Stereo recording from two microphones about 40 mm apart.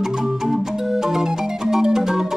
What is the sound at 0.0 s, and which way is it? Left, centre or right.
Music, centre.